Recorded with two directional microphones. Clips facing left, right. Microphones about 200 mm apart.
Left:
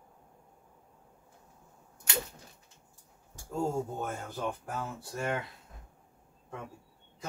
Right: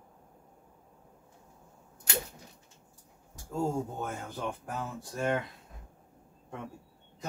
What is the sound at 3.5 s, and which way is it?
Speech, centre (ahead or behind).